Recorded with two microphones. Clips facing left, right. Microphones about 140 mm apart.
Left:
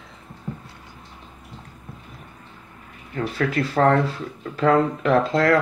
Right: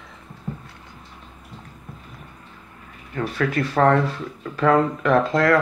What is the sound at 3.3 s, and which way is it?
Speech, 35° left (ahead or behind).